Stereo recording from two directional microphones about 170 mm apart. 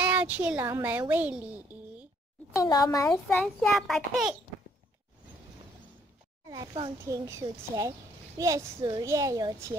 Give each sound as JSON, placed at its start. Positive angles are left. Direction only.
{"t": 0.0, "sound": "a child's voice", "side_deg": -10}
{"t": 2.5, "sound": "speech", "side_deg": 20}
{"t": 3.1, "sound": "a child's voice", "side_deg": 5}
{"t": 6.4, "sound": "a woman's voice", "side_deg": -20}